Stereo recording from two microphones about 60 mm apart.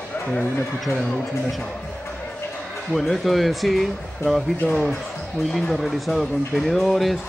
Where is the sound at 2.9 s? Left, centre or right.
Centre.